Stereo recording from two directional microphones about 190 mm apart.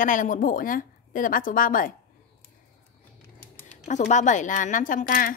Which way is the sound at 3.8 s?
40° left (ahead or behind).